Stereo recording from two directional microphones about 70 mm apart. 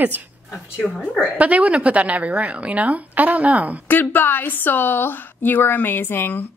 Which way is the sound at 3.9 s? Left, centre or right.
Left.